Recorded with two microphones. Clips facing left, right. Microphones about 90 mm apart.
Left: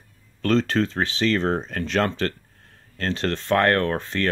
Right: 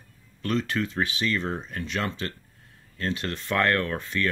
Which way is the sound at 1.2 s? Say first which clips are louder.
Left 7 dB; 55° left (ahead or behind).